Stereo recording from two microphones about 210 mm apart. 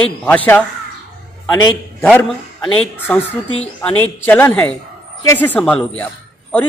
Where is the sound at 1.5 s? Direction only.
20° left (ahead or behind).